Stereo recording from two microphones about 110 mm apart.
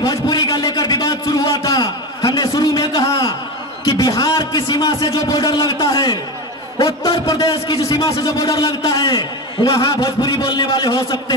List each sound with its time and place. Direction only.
0.0 s a sound: 35° left (ahead or behind)
3.8 s a man's voice: 35° left (ahead or behind)
7.2 s a man's voice: 30° left (ahead or behind)